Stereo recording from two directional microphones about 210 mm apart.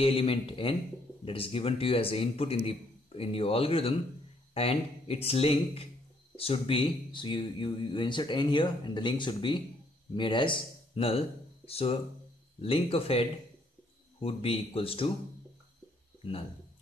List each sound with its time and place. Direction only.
0.0 s speech: 25° left (ahead or behind)